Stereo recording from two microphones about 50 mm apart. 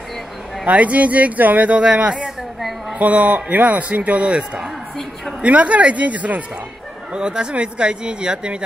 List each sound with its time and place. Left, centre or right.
0.7 s a man's voice: right
7.1 s a man's voice: centre